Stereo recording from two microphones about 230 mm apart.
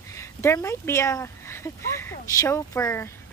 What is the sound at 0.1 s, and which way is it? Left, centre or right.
Speech, centre.